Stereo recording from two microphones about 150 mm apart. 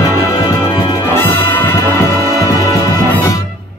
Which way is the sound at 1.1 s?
15° left (ahead or behind).